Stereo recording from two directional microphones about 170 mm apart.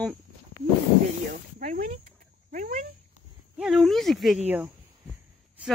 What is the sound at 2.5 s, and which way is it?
Speech, 50° right (ahead or behind).